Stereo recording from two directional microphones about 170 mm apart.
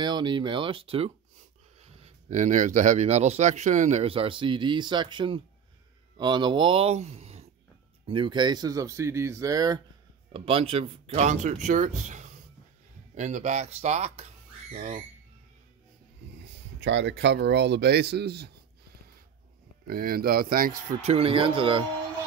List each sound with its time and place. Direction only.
0.0 s speech: 25° right (ahead or behind)
1.8 s speech: 45° right (ahead or behind); by 9.8 s 20° right (ahead or behind)
10.3 s speech: 30° right (ahead or behind)
16.8 s speech: 90° right; by 18.5 s 70° right (ahead or behind)
19.9 s speech: 60° right (ahead or behind)
21.0 s speech: 35° right (ahead or behind)